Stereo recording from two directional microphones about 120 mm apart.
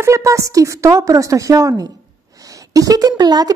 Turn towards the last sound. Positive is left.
turn(degrees=-35)  # may be behind; listen again after turning